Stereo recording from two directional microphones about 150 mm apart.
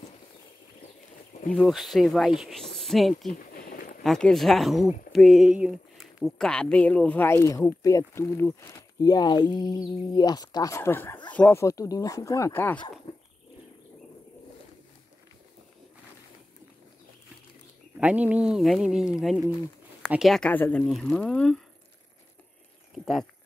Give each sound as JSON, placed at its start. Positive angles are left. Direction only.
{"t": 1.5, "sound": "speech", "side_deg": 0}
{"t": 3.3, "sound": "a sound", "side_deg": 65}
{"t": 4.0, "sound": "speech", "side_deg": 0}
{"t": 17.9, "sound": "speech", "side_deg": -10}